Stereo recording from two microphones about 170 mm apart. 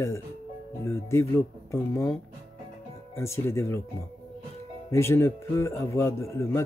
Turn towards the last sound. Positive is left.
turn(degrees=15)  # may be behind; listen again after turning